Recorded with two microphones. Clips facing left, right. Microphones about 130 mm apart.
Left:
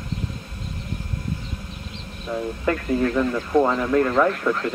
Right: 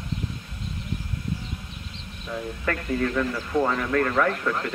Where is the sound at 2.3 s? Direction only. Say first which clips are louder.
Left 5 dB; 20° left (ahead or behind).